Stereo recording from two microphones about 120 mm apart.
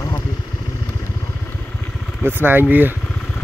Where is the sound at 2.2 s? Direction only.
15° right (ahead or behind).